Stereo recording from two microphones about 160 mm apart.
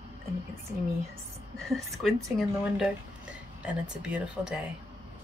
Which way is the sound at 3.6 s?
5° right (ahead or behind).